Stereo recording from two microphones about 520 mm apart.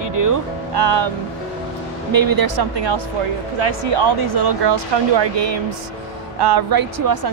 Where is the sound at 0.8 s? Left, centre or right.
Right.